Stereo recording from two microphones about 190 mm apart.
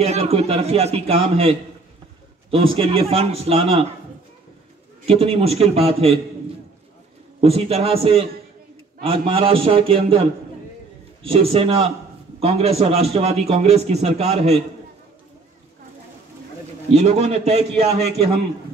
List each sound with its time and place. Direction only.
0.0 s a man's voice: 35° right (ahead or behind)
5.0 s a man's voice: 30° right (ahead or behind)
7.3 s a man's voice: 30° right (ahead or behind)
11.2 s a man's voice: 30° right (ahead or behind)
16.9 s a man's voice: 35° right (ahead or behind)